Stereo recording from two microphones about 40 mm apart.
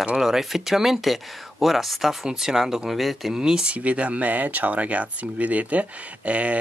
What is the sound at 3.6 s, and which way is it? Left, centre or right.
Speech, right.